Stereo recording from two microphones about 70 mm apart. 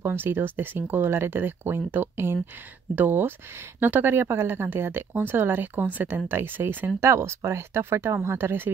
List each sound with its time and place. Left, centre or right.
0.0 s speech: right
7.0 s speech: right